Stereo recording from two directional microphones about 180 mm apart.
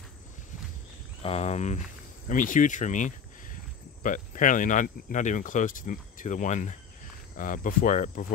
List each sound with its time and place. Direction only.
1.2 s speech: 35° left (ahead or behind)